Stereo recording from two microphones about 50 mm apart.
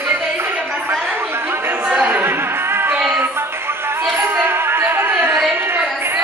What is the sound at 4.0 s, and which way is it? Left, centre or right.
Music, right.